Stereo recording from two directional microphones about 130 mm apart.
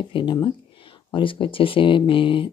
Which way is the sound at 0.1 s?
35° left (ahead or behind).